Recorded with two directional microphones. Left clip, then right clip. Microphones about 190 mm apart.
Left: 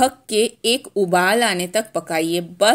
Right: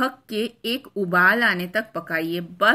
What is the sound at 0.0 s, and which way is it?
Speech, 15° left (ahead or behind).